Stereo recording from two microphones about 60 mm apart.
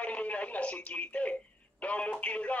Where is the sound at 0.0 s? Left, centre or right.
Left.